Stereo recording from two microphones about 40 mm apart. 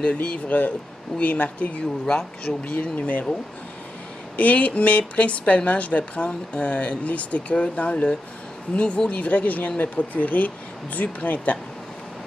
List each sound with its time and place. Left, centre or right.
0.0 s speech: left
0.5 s speech: left
4.4 s speech: left
9.1 s speech: left